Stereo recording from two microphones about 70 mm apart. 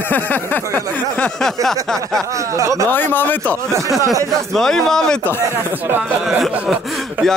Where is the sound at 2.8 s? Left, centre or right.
Left.